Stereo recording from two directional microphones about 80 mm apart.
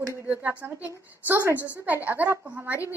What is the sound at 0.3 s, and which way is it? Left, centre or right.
A woman's voice, centre.